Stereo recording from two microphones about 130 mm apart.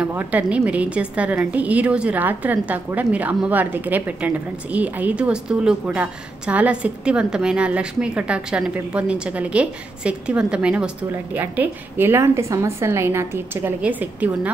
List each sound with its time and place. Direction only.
0.0 s a woman's voice: 10° right (ahead or behind)